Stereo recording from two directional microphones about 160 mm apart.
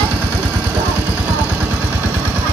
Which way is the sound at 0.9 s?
10° right (ahead or behind).